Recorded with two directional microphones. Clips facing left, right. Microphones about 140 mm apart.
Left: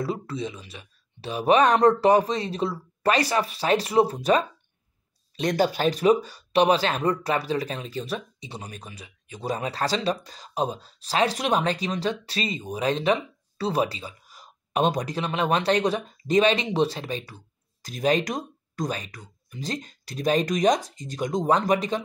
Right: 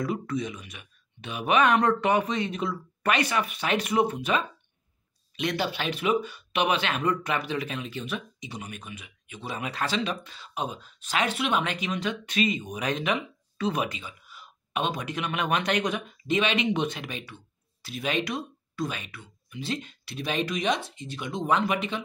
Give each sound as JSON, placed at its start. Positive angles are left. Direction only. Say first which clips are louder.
{"t": 0.0, "sound": "speech", "louder": "even", "side_deg": 30}